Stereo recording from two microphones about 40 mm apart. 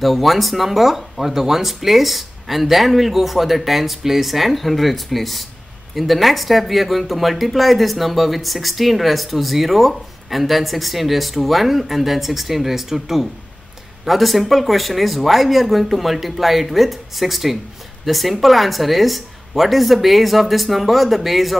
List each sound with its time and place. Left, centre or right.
0.0 s speech: centre